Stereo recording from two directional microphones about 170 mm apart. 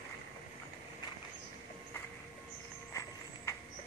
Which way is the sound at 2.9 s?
20° left (ahead or behind).